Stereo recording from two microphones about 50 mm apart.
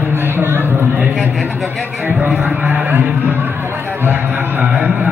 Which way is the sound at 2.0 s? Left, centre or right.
Right.